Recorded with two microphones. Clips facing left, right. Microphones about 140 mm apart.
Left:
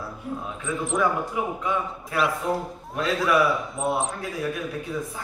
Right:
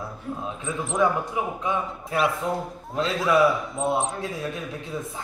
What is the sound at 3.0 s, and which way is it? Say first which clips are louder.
Speech: even; 25° right (ahead or behind).